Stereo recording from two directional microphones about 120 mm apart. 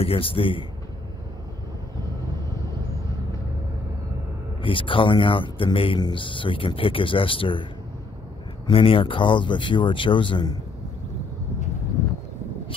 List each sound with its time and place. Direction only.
0.0 s speech: 50° left (ahead or behind)
4.6 s speech: 45° left (ahead or behind)
8.6 s speech: 50° left (ahead or behind)